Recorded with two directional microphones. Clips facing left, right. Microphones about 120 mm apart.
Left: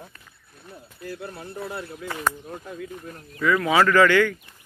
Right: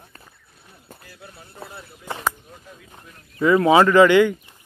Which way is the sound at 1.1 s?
60° left (ahead or behind).